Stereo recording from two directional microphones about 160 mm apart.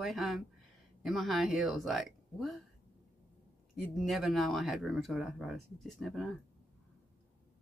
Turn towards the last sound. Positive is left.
turn(degrees=0)  # may be behind; listen again after turning